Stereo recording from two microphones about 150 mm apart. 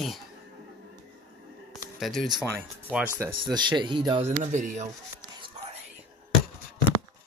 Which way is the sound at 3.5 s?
30° right (ahead or behind).